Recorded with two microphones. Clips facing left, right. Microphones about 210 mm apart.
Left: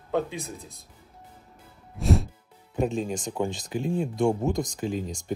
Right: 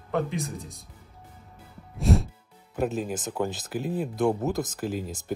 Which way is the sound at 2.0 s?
Centre (ahead or behind).